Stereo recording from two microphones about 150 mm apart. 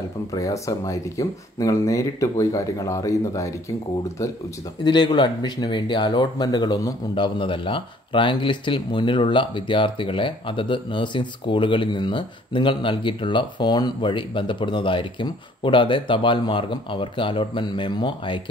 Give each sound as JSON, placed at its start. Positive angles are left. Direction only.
{"t": 0.3, "sound": "speech", "side_deg": 20}
{"t": 4.8, "sound": "speech", "side_deg": 30}